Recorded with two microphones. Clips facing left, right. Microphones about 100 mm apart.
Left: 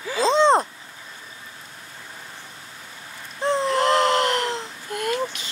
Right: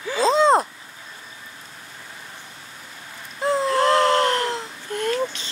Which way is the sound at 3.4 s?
5° right (ahead or behind).